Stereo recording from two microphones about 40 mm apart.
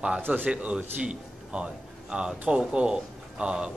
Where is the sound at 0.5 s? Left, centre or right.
Right.